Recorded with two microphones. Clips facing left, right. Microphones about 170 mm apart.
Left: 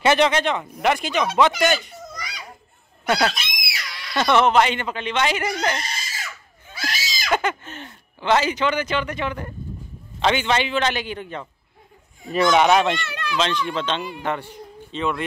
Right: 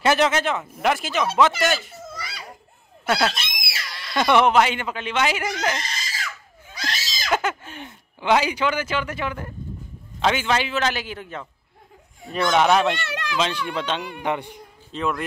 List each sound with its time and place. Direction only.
0.0 s speech: 5° right (ahead or behind)
2.1 s a sound: 5° right (ahead or behind)
3.1 s fowl: centre (ahead or behind)
4.2 s speech: 10° right (ahead or behind)
6.7 s speech: 5° left (ahead or behind)
13.0 s speech: 85° right
13.4 s speech: 10° right (ahead or behind)
14.9 s speech: centre (ahead or behind)